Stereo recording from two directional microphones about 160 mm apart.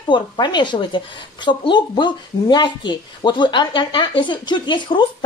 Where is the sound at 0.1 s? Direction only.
30° left (ahead or behind).